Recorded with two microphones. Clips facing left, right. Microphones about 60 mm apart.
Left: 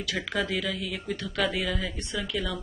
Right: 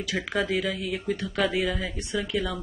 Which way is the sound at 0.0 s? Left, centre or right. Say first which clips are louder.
Right 2 dB; centre.